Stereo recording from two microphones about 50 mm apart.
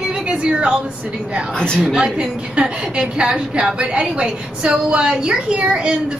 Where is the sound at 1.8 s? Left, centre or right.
Centre.